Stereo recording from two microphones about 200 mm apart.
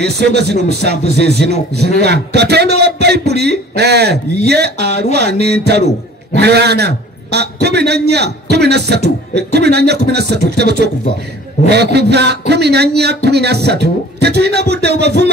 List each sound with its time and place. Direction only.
0.0 s a man's voice: 55° right (ahead or behind)